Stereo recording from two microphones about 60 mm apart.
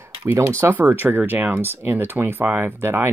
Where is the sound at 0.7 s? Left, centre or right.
Right.